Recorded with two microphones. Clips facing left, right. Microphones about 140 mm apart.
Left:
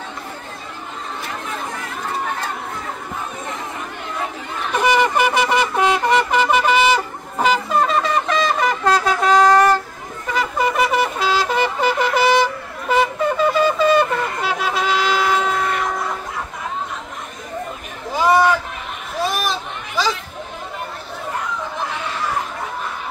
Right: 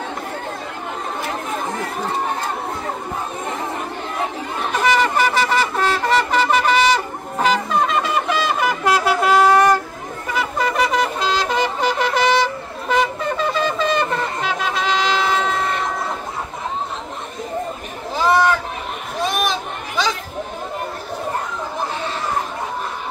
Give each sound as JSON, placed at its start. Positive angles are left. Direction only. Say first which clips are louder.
{"t": 4.8, "sound": "wind instrument", "louder": "left 1 dB", "side_deg": 10}
{"t": 7.7, "sound": "shofar", "louder": "left 1 dB", "side_deg": 0}
{"t": 10.3, "sound": "wind instrument", "louder": "left 1 dB", "side_deg": 0}
{"t": 12.9, "sound": "shofar", "louder": "left 2 dB", "side_deg": 5}
{"t": 18.1, "sound": "chatter", "louder": "left 1 dB", "side_deg": 10}
{"t": 19.2, "sound": "a sound", "louder": "right 1 dB", "side_deg": 0}